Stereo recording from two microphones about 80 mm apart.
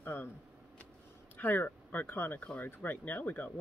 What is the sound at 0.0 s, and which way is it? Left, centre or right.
Vehicle, left.